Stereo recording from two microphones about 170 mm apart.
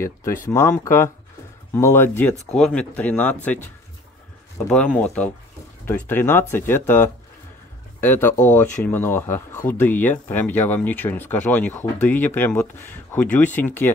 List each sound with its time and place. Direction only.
0.0 s speech: 15° left (ahead or behind)
4.6 s speech: 5° left (ahead or behind)